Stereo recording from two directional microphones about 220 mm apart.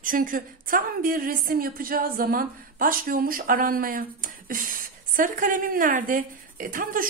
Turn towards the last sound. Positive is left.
turn(degrees=-40)  # may be behind; listen again after turning